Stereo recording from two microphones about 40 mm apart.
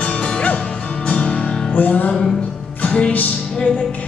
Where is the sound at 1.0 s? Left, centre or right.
Left.